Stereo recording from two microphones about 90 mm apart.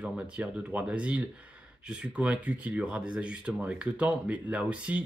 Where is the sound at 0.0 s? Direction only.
10° right (ahead or behind).